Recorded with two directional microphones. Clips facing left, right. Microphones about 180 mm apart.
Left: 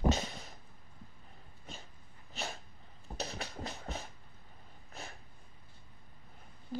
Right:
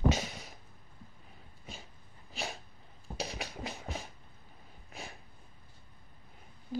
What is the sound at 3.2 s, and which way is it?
Music, 15° right (ahead or behind).